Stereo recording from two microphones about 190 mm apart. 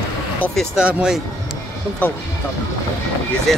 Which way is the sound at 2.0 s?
10° left (ahead or behind).